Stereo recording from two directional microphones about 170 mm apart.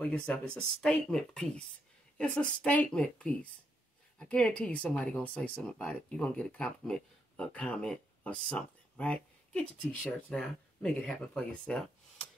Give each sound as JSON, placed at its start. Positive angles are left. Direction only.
{"t": 0.3, "sound": "speech", "side_deg": 5}